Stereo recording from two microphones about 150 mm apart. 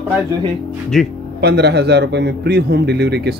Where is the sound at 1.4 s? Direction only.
90° right.